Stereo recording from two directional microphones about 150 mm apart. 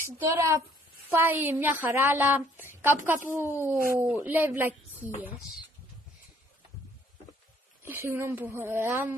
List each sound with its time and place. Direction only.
0.0 s a woman's voice: 15° right (ahead or behind)
7.8 s a woman's voice: 15° right (ahead or behind)